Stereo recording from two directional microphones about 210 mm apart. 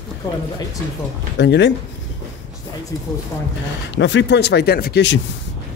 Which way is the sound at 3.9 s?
60° left (ahead or behind).